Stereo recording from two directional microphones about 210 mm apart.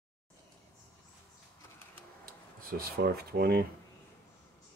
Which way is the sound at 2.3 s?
45° right (ahead or behind).